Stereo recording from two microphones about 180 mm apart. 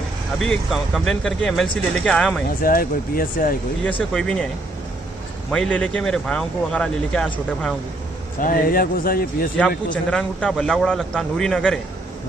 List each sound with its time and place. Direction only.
0.4 s speech: centre (ahead or behind)
2.6 s speech: 55° left (ahead or behind)
4.1 s speech: 5° left (ahead or behind)
5.5 s speech: 5° left (ahead or behind)
8.4 s speech: 50° left (ahead or behind)
10.1 s speech: 5° left (ahead or behind)